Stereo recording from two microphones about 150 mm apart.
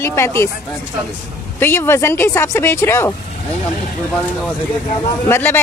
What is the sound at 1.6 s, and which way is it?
A woman's voice, 15° left (ahead or behind).